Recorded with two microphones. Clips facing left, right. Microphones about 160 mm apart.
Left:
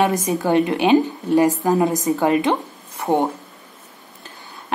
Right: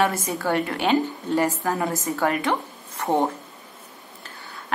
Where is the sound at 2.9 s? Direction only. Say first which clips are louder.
Left 3 dB; 10° left (ahead or behind).